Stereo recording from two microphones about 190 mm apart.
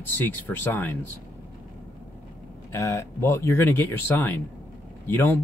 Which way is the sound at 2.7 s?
15° left (ahead or behind).